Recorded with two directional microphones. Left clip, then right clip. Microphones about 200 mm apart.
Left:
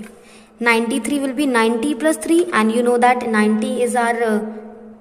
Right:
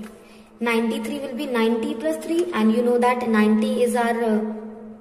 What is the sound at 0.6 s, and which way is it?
A woman's voice, 25° left (ahead or behind).